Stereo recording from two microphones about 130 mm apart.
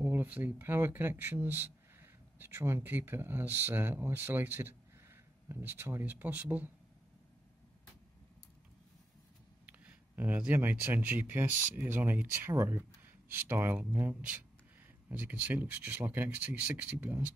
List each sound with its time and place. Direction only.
0.0 s speech: 10° right (ahead or behind)
9.7 s speech: 10° right (ahead or behind)